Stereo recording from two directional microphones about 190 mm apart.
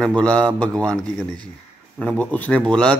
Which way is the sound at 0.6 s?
5° left (ahead or behind).